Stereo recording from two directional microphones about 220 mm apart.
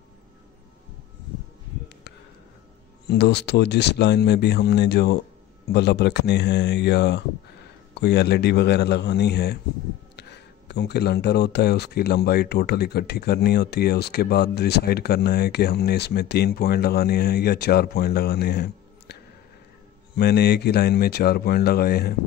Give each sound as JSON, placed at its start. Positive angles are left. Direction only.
{"t": 3.1, "sound": "speech", "side_deg": 50}